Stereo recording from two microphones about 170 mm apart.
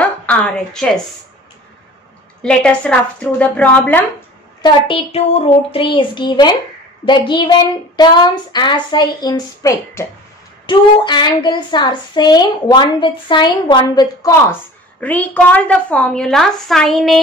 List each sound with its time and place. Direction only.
0.0 s a sound: 5° left (ahead or behind)
2.4 s a woman's voice: 5° left (ahead or behind)
4.6 s a woman's voice: 25° left (ahead or behind)
14.5 s a woman's voice: 10° left (ahead or behind)